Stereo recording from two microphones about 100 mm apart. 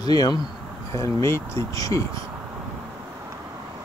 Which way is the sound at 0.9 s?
30° left (ahead or behind).